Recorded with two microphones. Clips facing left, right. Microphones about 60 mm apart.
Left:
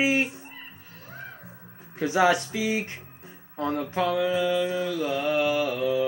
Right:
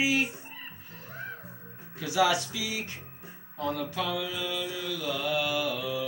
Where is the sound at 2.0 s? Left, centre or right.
Left.